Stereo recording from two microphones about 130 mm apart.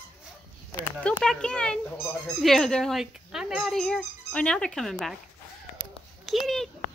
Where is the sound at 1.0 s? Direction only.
10° left (ahead or behind).